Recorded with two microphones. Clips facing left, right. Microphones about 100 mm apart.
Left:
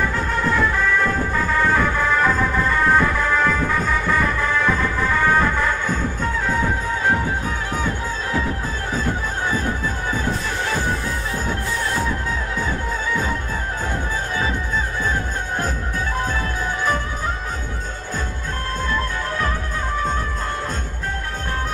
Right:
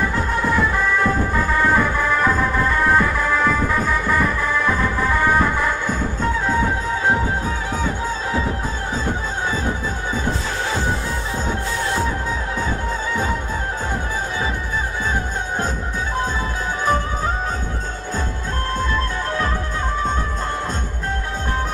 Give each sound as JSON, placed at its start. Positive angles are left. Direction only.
{"t": 0.4, "sound": "music", "side_deg": -10}